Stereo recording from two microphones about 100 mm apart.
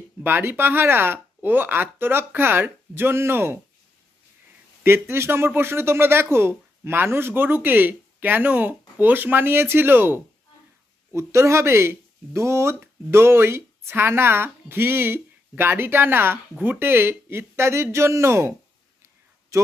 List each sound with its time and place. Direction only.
0.2 s speech: 20° right (ahead or behind)
4.8 s speech: 25° right (ahead or behind)